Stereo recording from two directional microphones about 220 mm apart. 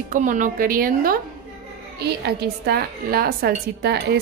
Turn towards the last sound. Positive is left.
turn(degrees=-50)  # may be behind; listen again after turning